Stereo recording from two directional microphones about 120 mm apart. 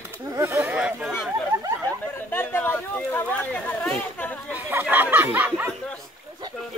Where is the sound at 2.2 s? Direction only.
15° left (ahead or behind).